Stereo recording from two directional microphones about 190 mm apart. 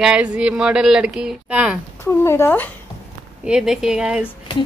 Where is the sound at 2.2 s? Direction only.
15° left (ahead or behind).